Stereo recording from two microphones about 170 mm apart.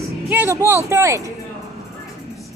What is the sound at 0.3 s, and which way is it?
Speech, 15° right (ahead or behind).